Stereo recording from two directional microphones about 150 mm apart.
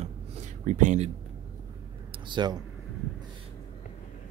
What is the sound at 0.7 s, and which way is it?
Speech, 55° right (ahead or behind).